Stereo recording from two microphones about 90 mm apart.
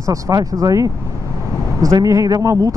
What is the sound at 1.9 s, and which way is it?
Speech, 40° right (ahead or behind).